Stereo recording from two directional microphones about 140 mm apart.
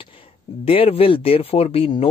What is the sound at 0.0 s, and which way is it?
Speech, 40° left (ahead or behind).